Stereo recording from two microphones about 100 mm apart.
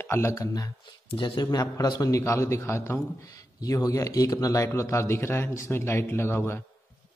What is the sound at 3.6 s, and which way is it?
Speech, 40° left (ahead or behind).